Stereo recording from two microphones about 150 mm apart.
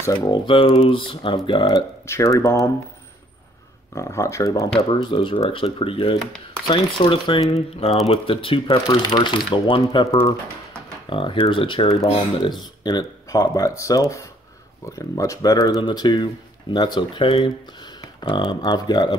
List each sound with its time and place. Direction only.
0.0 s speech: 25° left (ahead or behind)
2.0 s speech: 20° left (ahead or behind)
3.9 s speech: 20° left (ahead or behind)
4.7 s speech: 35° left (ahead or behind)
11.1 s speech: 35° left (ahead or behind)